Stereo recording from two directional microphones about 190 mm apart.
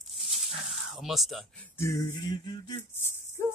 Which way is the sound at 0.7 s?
Centre (ahead or behind).